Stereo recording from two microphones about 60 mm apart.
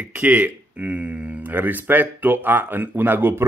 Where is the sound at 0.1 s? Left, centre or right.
Right.